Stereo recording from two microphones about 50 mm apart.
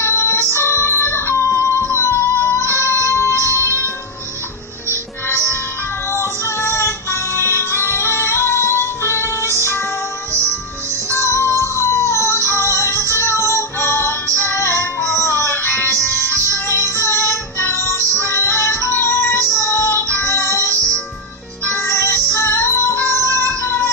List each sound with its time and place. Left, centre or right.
0.0 s music: left
5.3 s music: left
11.1 s music: left
21.8 s music: left